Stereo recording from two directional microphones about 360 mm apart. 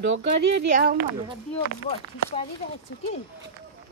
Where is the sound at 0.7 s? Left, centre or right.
Right.